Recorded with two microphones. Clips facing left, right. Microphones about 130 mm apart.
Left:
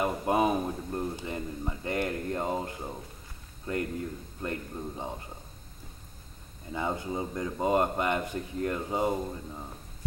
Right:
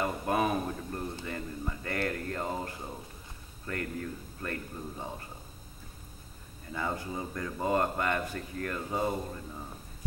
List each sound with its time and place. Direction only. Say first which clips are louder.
0.0 s a man's voice: left 3 dB; 20° left (ahead or behind)
6.7 s a man's voice: left 3 dB; 20° left (ahead or behind)